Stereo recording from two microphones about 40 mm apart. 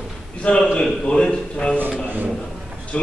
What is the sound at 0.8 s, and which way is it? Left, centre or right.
Speech, centre.